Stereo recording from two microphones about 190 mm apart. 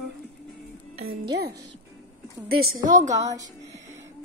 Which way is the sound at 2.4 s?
50° right (ahead or behind).